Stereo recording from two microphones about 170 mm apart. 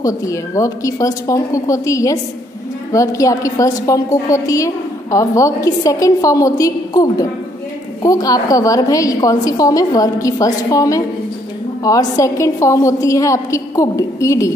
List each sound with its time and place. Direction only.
0.0 s a woman's voice: 20° left (ahead or behind)